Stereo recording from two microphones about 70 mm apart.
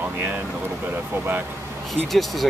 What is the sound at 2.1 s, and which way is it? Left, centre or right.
Speech, centre.